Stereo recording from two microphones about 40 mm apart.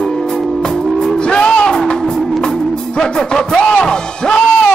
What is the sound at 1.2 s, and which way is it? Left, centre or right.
Music, left.